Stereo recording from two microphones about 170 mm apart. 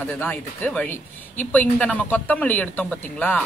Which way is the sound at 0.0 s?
10° left (ahead or behind).